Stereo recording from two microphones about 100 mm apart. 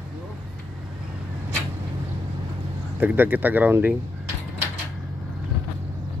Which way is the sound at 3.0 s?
15° right (ahead or behind).